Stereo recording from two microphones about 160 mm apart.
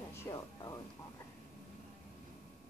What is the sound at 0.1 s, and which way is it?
Music, 20° left (ahead or behind).